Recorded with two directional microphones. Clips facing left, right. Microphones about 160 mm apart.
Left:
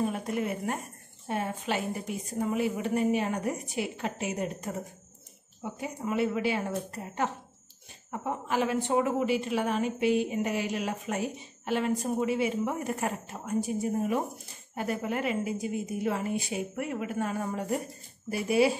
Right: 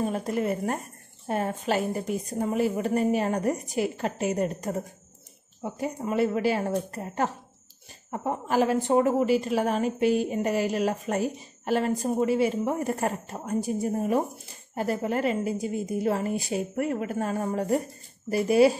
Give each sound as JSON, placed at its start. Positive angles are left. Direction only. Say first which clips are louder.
{"t": 0.1, "sound": "a woman's voice", "louder": "right 4 dB", "side_deg": -35}